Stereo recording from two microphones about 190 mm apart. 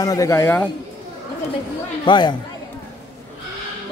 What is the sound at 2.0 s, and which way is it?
Speech, 25° left (ahead or behind).